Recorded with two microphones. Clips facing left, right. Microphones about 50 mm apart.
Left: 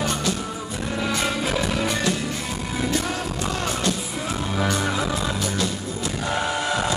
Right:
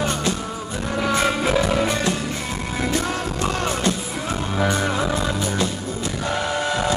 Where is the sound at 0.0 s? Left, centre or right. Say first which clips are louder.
Right 2 dB; right.